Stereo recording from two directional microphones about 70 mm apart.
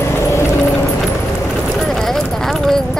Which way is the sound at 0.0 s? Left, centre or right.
Left.